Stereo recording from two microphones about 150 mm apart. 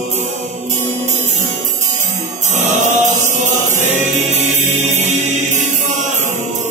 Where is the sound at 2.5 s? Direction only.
55° right (ahead or behind).